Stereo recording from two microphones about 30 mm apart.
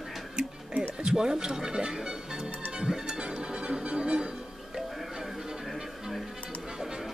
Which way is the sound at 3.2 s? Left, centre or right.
Right.